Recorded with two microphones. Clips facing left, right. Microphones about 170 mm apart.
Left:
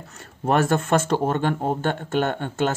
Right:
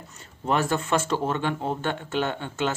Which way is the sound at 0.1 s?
60° left (ahead or behind).